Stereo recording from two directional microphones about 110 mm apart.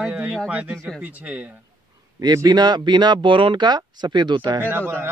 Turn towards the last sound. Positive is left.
turn(degrees=-20)  # may be behind; listen again after turning